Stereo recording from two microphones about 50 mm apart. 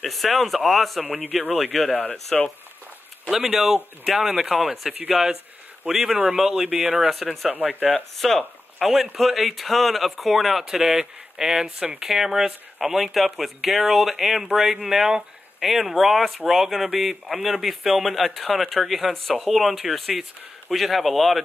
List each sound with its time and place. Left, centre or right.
0.0 s speech: centre
1.0 s a man's voice: right
1.9 s speech: left
3.3 s speech: centre
7.1 s speech: centre
15.6 s speech: centre